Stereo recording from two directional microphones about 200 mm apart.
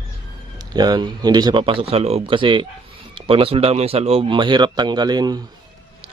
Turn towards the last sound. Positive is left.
turn(degrees=-20)  # may be behind; listen again after turning